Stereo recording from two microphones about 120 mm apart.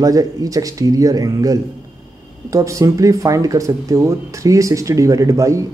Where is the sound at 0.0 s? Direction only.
30° right (ahead or behind).